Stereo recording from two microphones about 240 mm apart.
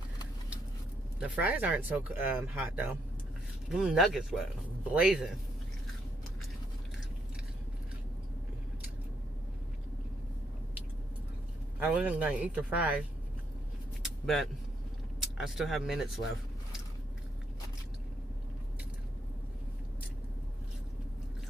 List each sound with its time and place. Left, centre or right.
1.2 s speech: centre
11.8 s speech: centre
14.0 s vehicle: centre
15.3 s speech: centre